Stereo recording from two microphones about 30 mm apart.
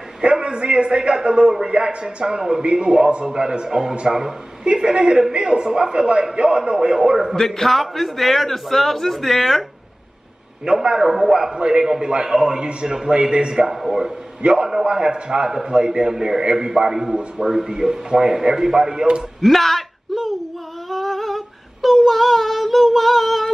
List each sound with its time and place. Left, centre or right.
0.2 s a man's voice: right
7.3 s a man's voice: centre
10.6 s a man's voice: right
11.1 s a man's voice: centre
19.4 s speech: centre
20.9 s female singing: centre